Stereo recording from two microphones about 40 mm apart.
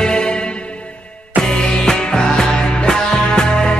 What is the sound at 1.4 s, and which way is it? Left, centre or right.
Music, centre.